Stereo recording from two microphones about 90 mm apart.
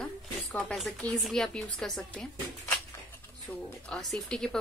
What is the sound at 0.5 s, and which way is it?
Speech, 15° left (ahead or behind).